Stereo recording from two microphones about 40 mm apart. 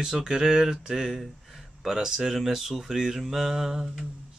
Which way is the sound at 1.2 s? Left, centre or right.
Centre.